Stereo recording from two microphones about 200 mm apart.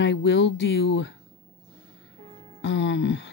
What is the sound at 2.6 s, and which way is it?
Speech, 65° left (ahead or behind).